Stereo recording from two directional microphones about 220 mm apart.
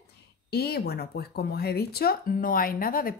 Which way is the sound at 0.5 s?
45° left (ahead or behind).